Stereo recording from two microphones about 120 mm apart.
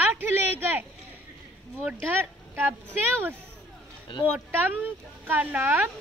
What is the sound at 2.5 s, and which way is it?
Speech, 15° right (ahead or behind).